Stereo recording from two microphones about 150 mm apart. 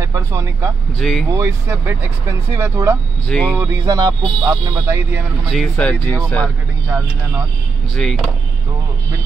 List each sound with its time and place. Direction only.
0.0 s speech: 20° right (ahead or behind)
0.9 s speech: centre (ahead or behind)
1.3 s speech: 20° right (ahead or behind)
3.3 s speech: 5° left (ahead or behind)
3.5 s speech: 20° right (ahead or behind)
5.5 s speech: 5° left (ahead or behind)
7.9 s speech: 5° left (ahead or behind)